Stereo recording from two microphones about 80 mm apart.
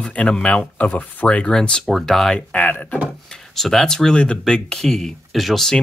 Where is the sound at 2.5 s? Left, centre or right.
Centre.